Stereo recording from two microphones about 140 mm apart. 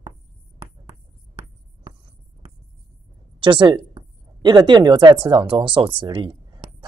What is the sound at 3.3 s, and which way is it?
Speech, 35° right (ahead or behind).